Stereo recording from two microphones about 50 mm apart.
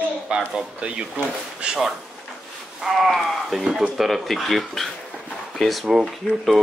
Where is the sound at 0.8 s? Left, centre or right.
Right.